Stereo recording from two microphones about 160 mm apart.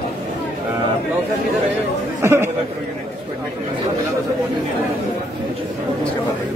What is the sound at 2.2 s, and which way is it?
Speech, 15° right (ahead or behind).